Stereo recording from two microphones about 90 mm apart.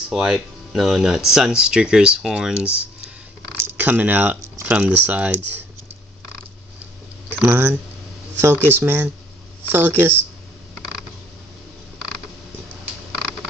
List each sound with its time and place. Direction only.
0.1 s speech: 5° right (ahead or behind)
7.2 s speech: 20° right (ahead or behind)